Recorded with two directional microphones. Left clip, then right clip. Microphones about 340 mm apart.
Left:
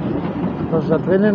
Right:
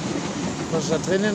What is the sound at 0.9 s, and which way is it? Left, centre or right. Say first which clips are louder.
Speech: left 7 dB; left.